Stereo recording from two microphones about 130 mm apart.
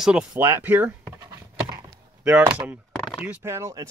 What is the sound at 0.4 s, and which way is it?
Speech, 15° right (ahead or behind).